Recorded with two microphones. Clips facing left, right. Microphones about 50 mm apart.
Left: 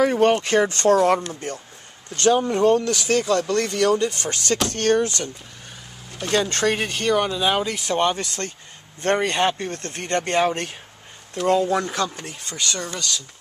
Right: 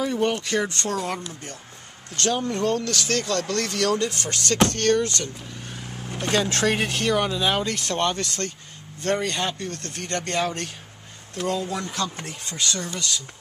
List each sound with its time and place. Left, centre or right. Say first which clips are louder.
0.0 s speech: left 6 dB; left
0.3 s speech: left 6 dB; left
2.1 s speech: left 6 dB; left
6.3 s speech: left 2 dB; centre
9.0 s speech: left 5 dB; left
11.4 s speech: left 7 dB; left